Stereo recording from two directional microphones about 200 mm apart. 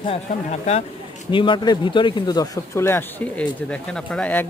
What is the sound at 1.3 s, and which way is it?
Speech, 25° left (ahead or behind).